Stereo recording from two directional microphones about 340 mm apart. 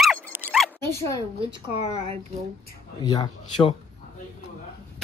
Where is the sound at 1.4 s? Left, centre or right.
Centre.